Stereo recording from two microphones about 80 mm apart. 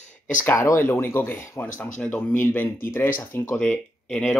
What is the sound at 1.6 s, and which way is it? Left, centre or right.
Speech, left.